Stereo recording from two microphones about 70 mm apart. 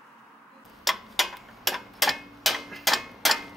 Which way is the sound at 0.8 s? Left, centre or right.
Centre.